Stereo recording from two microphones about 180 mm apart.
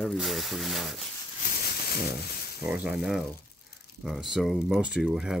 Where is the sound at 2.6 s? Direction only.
5° right (ahead or behind).